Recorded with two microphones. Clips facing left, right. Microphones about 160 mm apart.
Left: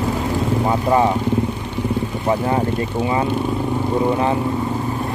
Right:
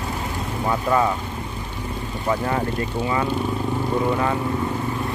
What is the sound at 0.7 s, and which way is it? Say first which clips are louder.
Speech: left 2 dB; 25° left (ahead or behind).